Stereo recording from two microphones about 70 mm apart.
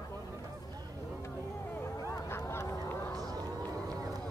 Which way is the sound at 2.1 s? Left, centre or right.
Left.